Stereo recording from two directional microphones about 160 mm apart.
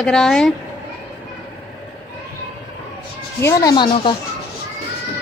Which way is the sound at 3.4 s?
20° left (ahead or behind).